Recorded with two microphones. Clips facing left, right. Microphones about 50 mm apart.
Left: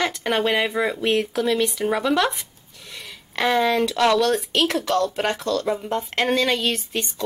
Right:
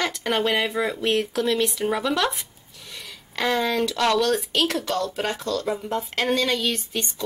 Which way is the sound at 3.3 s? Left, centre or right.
Centre.